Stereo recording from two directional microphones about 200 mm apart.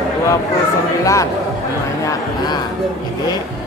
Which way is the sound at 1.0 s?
15° left (ahead or behind).